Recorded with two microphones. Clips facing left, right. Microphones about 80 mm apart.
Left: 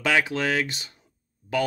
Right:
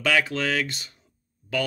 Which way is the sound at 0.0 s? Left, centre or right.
Centre.